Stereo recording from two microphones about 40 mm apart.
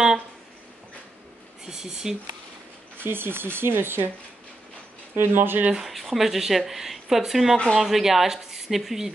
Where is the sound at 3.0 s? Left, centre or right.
Right.